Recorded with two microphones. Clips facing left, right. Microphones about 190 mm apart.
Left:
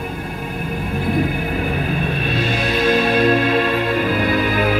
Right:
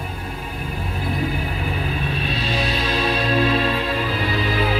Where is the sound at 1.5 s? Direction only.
50° left (ahead or behind).